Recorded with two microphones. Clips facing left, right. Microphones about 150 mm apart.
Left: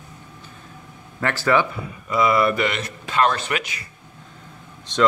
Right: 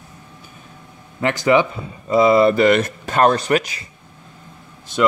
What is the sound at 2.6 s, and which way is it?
A man's voice, 45° right (ahead or behind).